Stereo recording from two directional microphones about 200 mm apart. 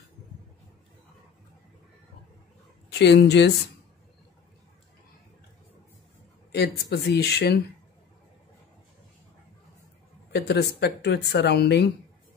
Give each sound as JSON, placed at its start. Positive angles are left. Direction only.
{"t": 2.9, "sound": "speech", "side_deg": 55}
{"t": 6.5, "sound": "speech", "side_deg": 55}
{"t": 10.3, "sound": "speech", "side_deg": 55}